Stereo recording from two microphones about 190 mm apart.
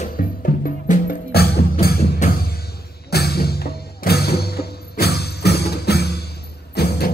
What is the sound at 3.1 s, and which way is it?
Music, 55° left (ahead or behind).